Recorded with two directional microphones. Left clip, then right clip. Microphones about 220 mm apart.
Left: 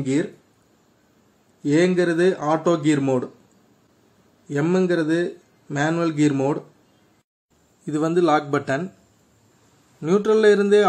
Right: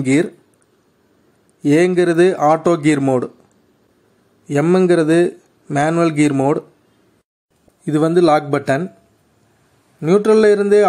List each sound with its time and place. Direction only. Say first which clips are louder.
0.0 s a man's voice: right 7 dB; 40° right (ahead or behind)
1.6 s a man's voice: right 5 dB; 40° right (ahead or behind)
4.5 s a man's voice: right 7 dB; 35° right (ahead or behind)
7.8 s speech: right 6 dB; 30° right (ahead or behind)
9.9 s speech: right 6 dB; 30° right (ahead or behind)